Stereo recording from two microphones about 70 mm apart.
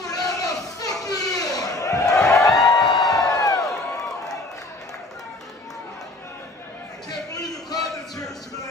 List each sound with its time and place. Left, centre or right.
0.0 s crowd: left
0.7 s a sound: left
2.1 s a sound: centre
2.5 s music: left
2.8 s music: centre
3.2 s crowd: left